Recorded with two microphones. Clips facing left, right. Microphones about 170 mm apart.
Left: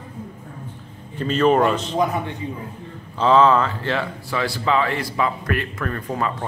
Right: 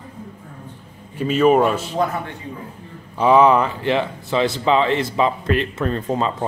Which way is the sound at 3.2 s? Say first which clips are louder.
Right 2 dB; 15° right (ahead or behind).